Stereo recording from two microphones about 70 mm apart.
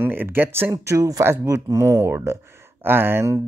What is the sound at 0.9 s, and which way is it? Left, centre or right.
Speech, right.